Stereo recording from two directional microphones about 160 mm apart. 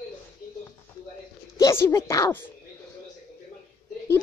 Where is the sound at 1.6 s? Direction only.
20° left (ahead or behind).